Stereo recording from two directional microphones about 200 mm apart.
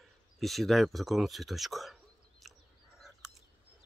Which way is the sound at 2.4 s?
Centre (ahead or behind).